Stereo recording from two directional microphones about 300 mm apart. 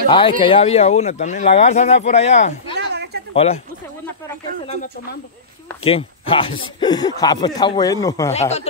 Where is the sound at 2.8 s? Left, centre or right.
Right.